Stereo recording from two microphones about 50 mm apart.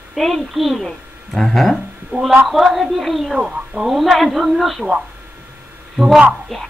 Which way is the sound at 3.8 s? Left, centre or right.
Centre.